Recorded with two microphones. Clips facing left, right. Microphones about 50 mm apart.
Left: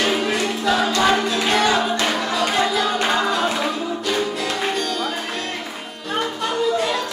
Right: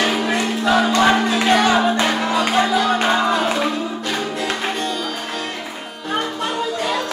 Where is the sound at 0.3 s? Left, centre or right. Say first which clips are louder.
Right 2 dB; centre.